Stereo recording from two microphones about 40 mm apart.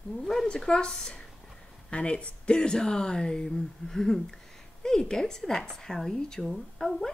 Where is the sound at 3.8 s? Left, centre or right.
Centre.